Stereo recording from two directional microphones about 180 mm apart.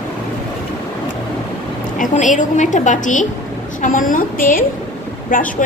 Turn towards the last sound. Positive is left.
turn(degrees=50)  # may be behind; listen again after turning